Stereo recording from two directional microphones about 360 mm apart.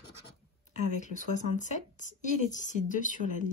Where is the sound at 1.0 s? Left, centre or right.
Centre.